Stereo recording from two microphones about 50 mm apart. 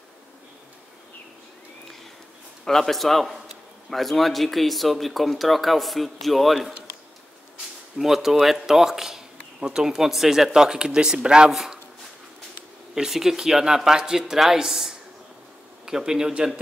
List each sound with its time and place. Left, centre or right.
2.6 s speech: centre
8.0 s speech: centre
12.9 s speech: centre